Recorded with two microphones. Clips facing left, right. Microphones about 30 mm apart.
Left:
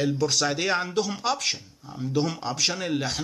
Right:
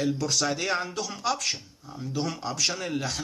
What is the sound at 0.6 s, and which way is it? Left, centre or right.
Speech, centre.